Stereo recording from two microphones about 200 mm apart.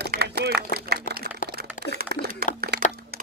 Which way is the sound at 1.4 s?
40° left (ahead or behind).